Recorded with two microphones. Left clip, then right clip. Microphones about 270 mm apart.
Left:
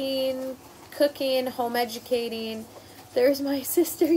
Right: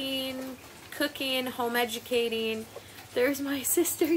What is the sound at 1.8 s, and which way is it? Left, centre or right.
Speech, right.